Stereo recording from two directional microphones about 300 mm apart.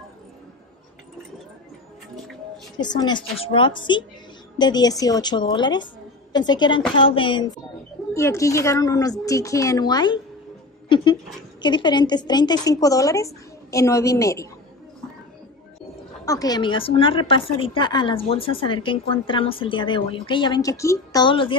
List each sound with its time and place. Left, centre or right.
2.8 s speech: centre
11.6 s speech: centre
16.3 s speech: centre